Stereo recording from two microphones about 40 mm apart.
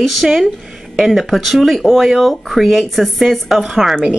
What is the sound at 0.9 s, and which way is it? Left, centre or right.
Speech, centre.